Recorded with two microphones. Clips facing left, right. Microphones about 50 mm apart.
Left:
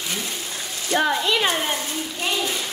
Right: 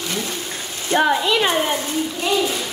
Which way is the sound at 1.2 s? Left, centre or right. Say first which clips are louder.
Right 3 dB; centre.